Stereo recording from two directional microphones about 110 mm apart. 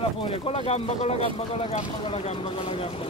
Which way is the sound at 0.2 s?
50° left (ahead or behind).